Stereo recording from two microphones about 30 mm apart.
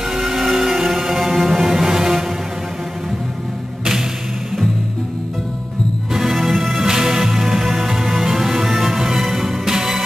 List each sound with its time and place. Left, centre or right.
0.1 s music: centre
6.3 s music: centre
6.9 s music: right; by 9.6 s centre
9.7 s music: centre